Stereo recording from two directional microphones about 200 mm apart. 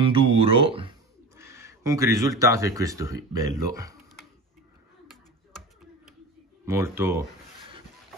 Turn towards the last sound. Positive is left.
turn(degrees=-10)  # may be behind; listen again after turning